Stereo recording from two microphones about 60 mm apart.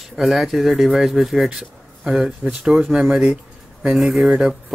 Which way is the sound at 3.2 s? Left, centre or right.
Centre.